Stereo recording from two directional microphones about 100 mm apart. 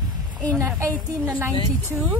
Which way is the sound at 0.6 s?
30° right (ahead or behind).